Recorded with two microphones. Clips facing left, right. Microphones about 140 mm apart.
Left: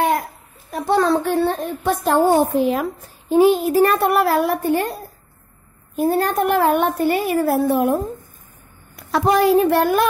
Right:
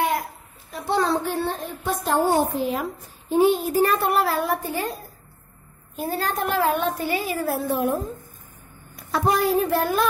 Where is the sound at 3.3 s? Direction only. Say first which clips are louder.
Left 5 dB; 85° left; by 8.0 s 65° left (ahead or behind).